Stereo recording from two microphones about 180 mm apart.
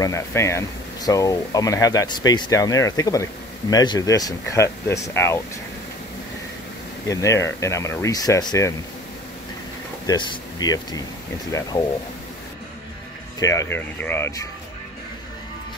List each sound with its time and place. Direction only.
0.0 s speech: 15° left (ahead or behind)
7.1 s speech: 15° left (ahead or behind)
10.0 s speech: 25° left (ahead or behind)
13.4 s speech: 20° left (ahead or behind)